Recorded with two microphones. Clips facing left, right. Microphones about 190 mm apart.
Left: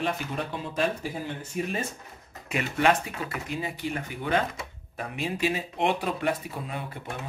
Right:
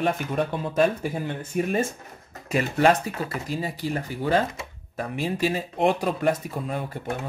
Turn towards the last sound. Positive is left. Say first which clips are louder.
# right 6 dB
turn(degrees=-45)  # may be behind; listen again after turning